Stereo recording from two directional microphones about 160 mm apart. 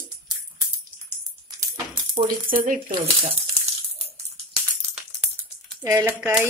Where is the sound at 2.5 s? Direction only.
60° right (ahead or behind).